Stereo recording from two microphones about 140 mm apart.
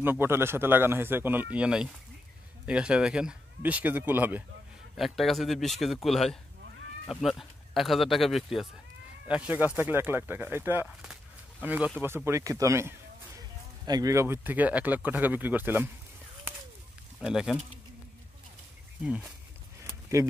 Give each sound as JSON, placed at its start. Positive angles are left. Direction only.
{"t": 0.0, "sound": "speech", "side_deg": -15}
{"t": 4.9, "sound": "speech", "side_deg": 0}
{"t": 12.3, "sound": "speech", "side_deg": -25}
{"t": 17.2, "sound": "speech", "side_deg": -5}
{"t": 19.0, "sound": "speech", "side_deg": -5}
{"t": 19.8, "sound": "a sound", "side_deg": -20}